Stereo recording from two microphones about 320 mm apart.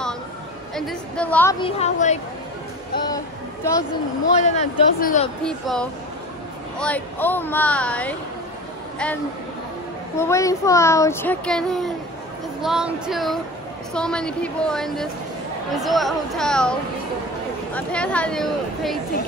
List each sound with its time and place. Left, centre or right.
0.7 s a child's voice: centre; by 2.1 s left
4.4 s speech: left
5.4 s speech: centre
10.1 s a child's voice: centre
17.7 s speech: centre